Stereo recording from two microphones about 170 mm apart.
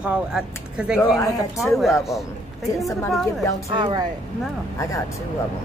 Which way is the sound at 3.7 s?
25° right (ahead or behind).